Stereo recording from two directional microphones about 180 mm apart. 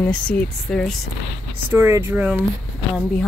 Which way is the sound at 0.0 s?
5° left (ahead or behind).